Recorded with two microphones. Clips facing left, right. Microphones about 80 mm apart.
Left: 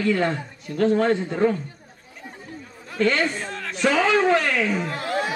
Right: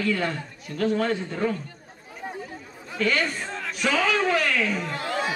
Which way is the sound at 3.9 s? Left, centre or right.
Centre.